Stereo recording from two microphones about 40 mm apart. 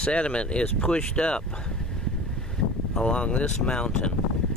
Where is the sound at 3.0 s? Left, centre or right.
Left.